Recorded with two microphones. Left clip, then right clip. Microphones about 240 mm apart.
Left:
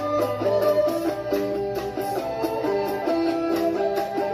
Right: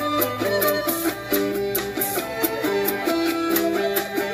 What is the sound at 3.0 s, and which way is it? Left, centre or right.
Music, right.